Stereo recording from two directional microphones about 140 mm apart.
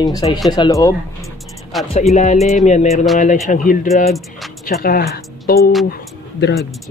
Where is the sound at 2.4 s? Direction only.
55° left (ahead or behind).